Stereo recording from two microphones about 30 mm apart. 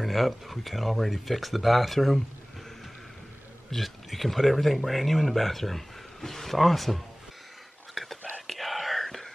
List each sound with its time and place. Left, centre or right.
0.0 s speech: centre
3.8 s speech: centre
7.9 s whispering: centre